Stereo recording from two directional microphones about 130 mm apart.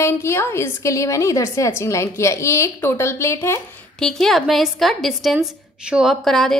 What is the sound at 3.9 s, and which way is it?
A woman's voice, 5° left (ahead or behind).